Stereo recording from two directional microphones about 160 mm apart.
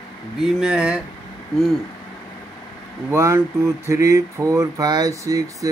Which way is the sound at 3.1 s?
15° right (ahead or behind).